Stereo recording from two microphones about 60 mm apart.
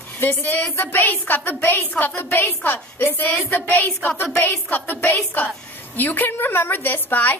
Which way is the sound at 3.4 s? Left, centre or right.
Left.